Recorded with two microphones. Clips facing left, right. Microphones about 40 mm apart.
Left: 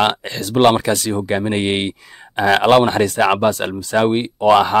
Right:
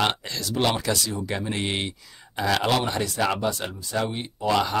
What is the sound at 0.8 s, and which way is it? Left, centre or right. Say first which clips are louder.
Speech: left 8 dB; left.